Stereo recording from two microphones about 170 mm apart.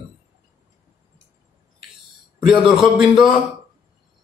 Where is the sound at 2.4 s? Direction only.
Centre (ahead or behind).